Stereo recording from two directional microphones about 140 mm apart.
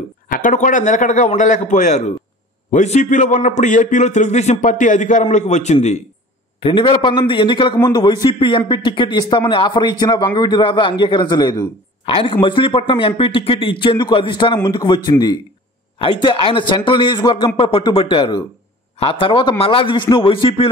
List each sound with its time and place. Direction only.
0.3 s a man's voice: 65° left (ahead or behind)
6.6 s a man's voice: 35° left (ahead or behind)